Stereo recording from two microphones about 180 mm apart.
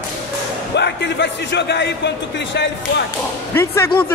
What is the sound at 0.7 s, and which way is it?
A man's voice, 70° left (ahead or behind).